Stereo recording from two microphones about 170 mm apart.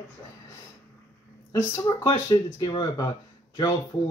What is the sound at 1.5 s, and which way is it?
Speech, 15° left (ahead or behind).